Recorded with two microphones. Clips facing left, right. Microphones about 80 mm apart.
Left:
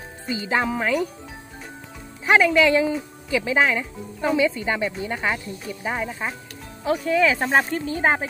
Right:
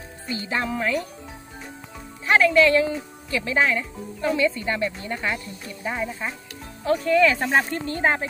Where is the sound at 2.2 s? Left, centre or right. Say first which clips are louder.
Even; centre.